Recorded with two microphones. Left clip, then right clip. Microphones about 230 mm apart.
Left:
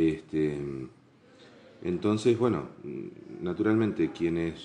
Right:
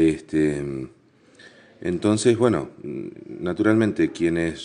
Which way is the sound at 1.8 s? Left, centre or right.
Right.